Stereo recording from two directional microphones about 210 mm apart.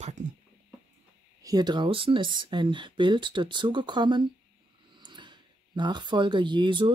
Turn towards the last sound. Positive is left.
turn(degrees=-20)  # may be behind; listen again after turning